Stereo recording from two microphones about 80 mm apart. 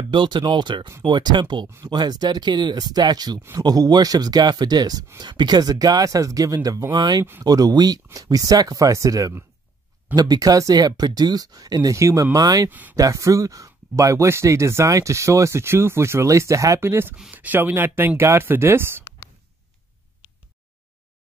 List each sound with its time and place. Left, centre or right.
0.1 s speech: right
1.9 s speech: right
7.0 s speech: right
12.6 s speech: right
12.9 s speech: right